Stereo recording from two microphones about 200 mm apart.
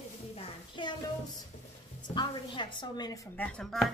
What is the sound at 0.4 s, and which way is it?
Music, 25° left (ahead or behind).